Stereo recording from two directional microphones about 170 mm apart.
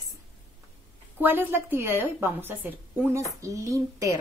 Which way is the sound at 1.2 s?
10° right (ahead or behind).